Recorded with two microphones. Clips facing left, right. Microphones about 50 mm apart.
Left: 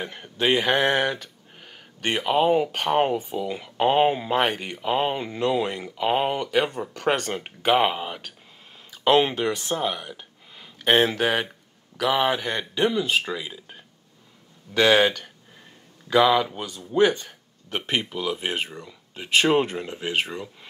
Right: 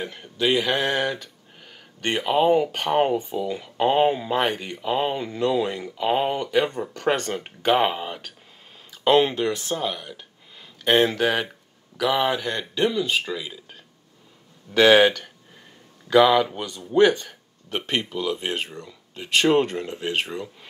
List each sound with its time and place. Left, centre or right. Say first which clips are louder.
0.0 s speech: even; left
2.0 s speech: right 1 dB; centre
9.3 s speech: even; left
14.7 s speech: right 3 dB; centre